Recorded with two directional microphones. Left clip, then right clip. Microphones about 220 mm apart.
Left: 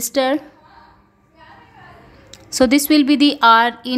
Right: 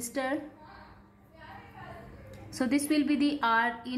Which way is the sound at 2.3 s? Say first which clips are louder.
Left 16 dB; 45° left (ahead or behind).